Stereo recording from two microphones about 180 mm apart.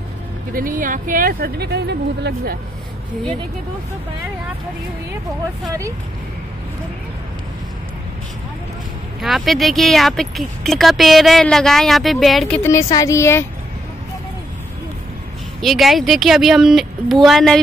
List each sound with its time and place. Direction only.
0.5 s speech: 50° right (ahead or behind); by 2.5 s 70° right (ahead or behind)
9.2 s speech: centre (ahead or behind)
15.6 s speech: centre (ahead or behind)